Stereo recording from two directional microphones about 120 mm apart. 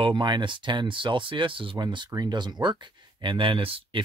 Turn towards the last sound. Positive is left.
turn(degrees=-50)  # may be behind; listen again after turning